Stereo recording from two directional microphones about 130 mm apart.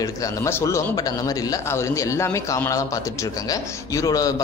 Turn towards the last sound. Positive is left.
turn(degrees=25)  # may be behind; listen again after turning